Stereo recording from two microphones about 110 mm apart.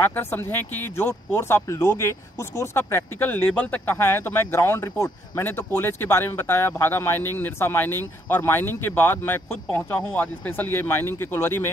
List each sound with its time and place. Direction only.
0.0 s speech: 15° left (ahead or behind)